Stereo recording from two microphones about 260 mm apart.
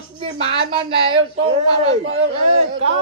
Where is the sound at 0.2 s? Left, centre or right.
Right.